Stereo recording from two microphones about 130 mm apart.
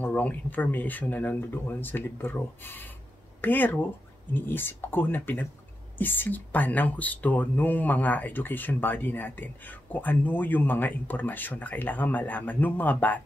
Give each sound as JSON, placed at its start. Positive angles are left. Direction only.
{"t": 0.0, "sound": "speech", "side_deg": 10}